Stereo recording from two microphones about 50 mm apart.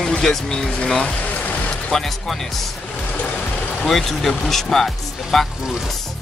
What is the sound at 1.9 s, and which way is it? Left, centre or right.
Speech, centre.